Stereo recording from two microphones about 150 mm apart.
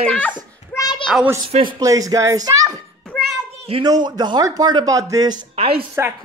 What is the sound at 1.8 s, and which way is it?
Speech, 25° right (ahead or behind).